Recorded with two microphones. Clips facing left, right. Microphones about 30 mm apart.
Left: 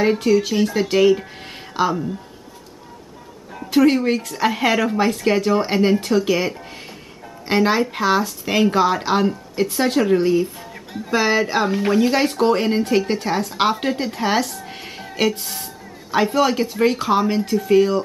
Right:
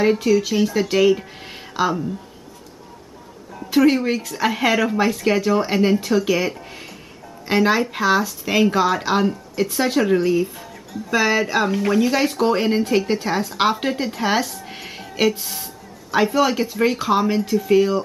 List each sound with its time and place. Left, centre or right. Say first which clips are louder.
0.0 s speech: even; centre
3.7 s speech: left 1 dB; centre
10.7 s music: left 1 dB; left
11.1 s speech: even; centre